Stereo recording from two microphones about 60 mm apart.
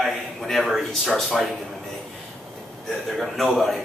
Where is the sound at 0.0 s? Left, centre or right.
Centre.